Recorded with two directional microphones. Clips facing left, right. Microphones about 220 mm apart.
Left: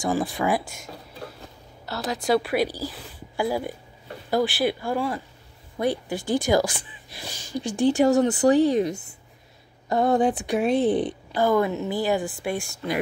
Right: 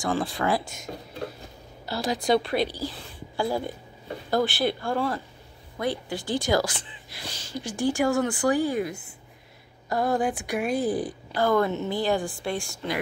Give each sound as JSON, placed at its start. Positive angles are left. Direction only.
{"t": 0.0, "sound": "speech", "side_deg": 15}
{"t": 2.0, "sound": "a woman's voice", "side_deg": 5}
{"t": 9.8, "sound": "a woman's voice", "side_deg": 20}
{"t": 11.3, "sound": "speech", "side_deg": 10}